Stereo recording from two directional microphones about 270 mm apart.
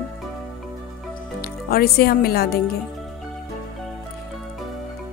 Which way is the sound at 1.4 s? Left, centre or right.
Left.